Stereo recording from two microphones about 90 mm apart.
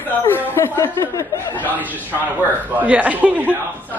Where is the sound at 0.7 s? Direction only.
25° left (ahead or behind).